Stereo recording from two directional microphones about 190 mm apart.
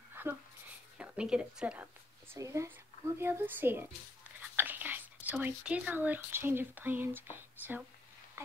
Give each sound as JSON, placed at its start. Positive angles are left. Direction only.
{"t": 0.1, "sound": "a sound", "side_deg": -10}
{"t": 0.9, "sound": "a woman's voice", "side_deg": -5}
{"t": 2.3, "sound": "speech", "side_deg": -15}